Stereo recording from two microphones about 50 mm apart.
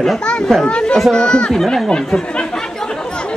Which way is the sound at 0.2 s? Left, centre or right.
Centre.